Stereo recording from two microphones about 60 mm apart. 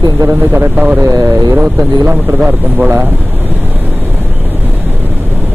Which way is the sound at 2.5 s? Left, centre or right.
Right.